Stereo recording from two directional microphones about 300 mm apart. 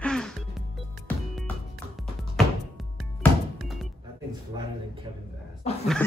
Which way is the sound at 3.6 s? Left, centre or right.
Centre.